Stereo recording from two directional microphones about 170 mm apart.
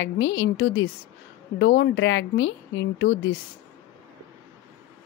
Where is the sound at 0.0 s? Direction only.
90° left.